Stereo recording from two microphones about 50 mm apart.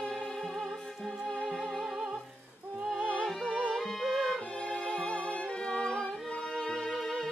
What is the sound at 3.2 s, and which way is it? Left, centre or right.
Music, centre.